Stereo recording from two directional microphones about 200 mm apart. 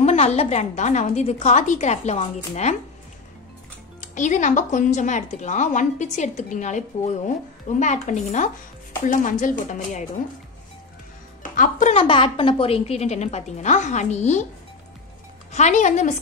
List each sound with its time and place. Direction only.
0.0 s a woman's voice: 30° left (ahead or behind)
4.0 s a woman's voice: 40° left (ahead or behind)
7.8 s a woman's voice: 35° left (ahead or behind)
11.5 s a woman's voice: 40° left (ahead or behind)
12.0 s a woman's voice: 25° left (ahead or behind)
15.5 s a woman's voice: 35° left (ahead or behind)